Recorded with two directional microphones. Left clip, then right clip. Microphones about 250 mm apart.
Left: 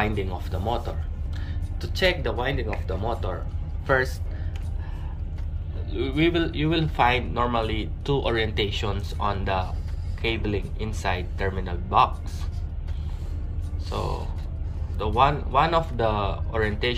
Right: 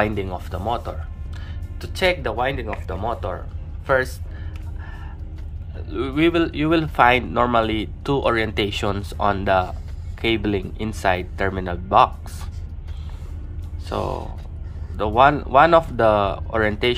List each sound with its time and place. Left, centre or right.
0.0 s speech: centre
5.9 s speech: centre
13.8 s speech: right